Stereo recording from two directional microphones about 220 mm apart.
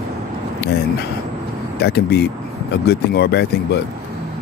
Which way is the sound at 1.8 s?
50° left (ahead or behind).